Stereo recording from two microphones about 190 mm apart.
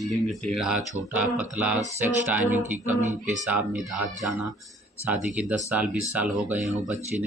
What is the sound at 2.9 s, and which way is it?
Speech, 40° right (ahead or behind).